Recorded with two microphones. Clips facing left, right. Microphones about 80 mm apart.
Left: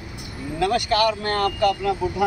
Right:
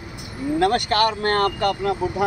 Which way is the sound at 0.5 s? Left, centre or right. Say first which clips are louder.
Right 1 dB; right.